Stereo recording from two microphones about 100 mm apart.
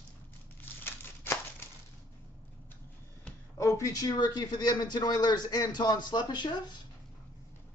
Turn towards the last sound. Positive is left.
turn(degrees=50)  # may be behind; listen again after turning